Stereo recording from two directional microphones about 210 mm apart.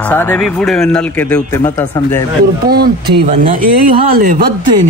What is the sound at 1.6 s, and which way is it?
Speech, 20° left (ahead or behind).